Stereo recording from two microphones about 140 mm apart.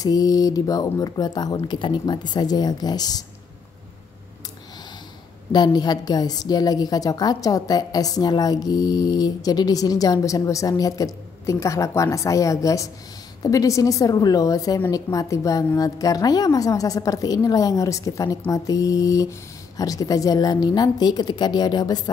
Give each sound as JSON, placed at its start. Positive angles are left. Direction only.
{"t": 0.0, "sound": "a woman's voice", "side_deg": 25}
{"t": 5.5, "sound": "a woman's voice", "side_deg": 30}